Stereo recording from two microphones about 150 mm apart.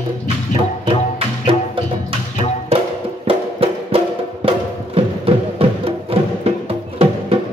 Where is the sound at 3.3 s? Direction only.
40° right (ahead or behind).